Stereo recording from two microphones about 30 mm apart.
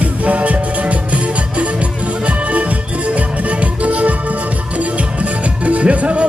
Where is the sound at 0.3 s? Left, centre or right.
Right.